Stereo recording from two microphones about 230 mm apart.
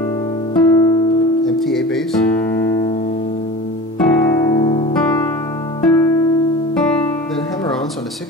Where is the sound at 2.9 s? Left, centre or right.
Left.